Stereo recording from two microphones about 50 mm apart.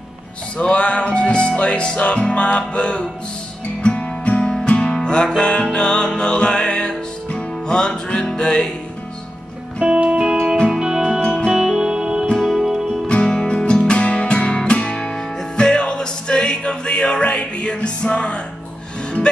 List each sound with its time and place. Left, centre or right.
0.6 s music: left
9.8 s music: right
11.1 s music: centre
11.5 s music: centre
12.4 s music: centre
13.0 s music: centre